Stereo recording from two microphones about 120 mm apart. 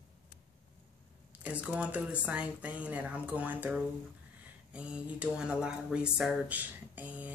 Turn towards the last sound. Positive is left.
turn(degrees=-15)  # may be behind; listen again after turning